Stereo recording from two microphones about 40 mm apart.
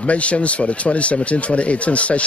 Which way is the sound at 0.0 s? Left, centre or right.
Left.